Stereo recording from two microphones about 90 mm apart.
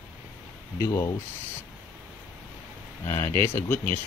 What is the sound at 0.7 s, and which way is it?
Speech, 40° left (ahead or behind).